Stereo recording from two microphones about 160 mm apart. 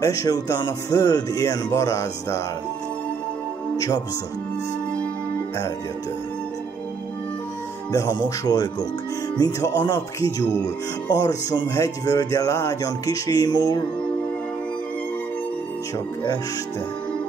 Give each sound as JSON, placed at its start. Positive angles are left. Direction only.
{"t": 0.0, "sound": "speech", "side_deg": 20}
{"t": 3.7, "sound": "speech", "side_deg": 20}
{"t": 7.9, "sound": "speech", "side_deg": 25}
{"t": 11.2, "sound": "speech", "side_deg": 20}